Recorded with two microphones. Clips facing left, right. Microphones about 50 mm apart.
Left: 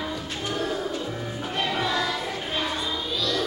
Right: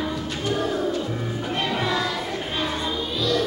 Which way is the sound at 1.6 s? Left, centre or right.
Centre.